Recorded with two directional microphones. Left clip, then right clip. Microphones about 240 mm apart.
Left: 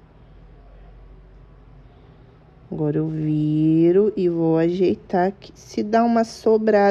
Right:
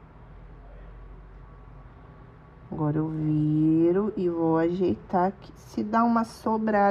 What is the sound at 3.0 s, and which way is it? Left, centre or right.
A woman's voice, left.